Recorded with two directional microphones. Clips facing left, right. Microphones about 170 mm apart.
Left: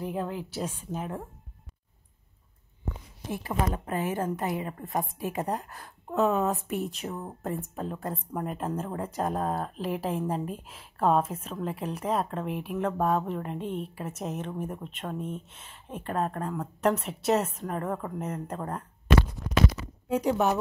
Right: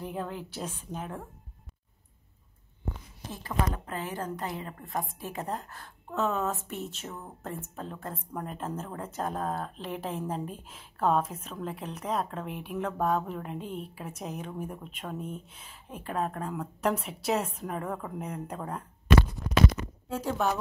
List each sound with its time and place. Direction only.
0.0 s speech: 5° left (ahead or behind)
3.3 s speech: 10° left (ahead or behind)
6.8 s speech: centre (ahead or behind)
7.1 s speech: 15° left (ahead or behind)
20.1 s speech: 15° left (ahead or behind)